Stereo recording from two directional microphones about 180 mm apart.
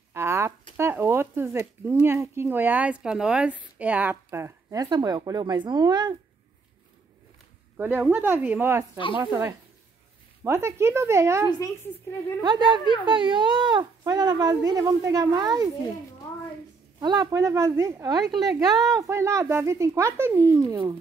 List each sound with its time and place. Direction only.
0.1 s a sound: 15° right (ahead or behind)
0.7 s speech: 15° right (ahead or behind)
7.7 s speech: 10° right (ahead or behind)
12.4 s speech: 25° right (ahead or behind)
17.0 s speech: 20° right (ahead or behind)